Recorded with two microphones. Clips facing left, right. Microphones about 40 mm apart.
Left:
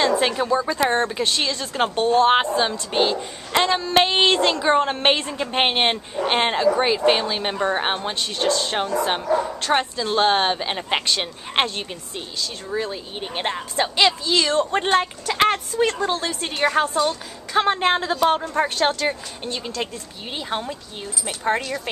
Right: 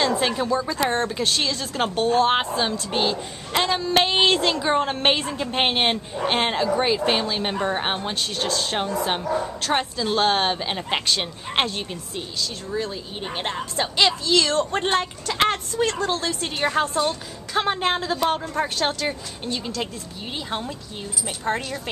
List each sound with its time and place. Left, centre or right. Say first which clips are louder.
0.0 s a woman's voice: left 2 dB; centre
15.5 s speech: left 2 dB; left
16.0 s a woman's voice: left 1 dB; centre
21.5 s a woman's voice: left 3 dB; centre